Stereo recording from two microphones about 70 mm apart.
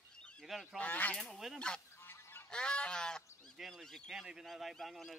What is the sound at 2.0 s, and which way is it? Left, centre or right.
Goose, left.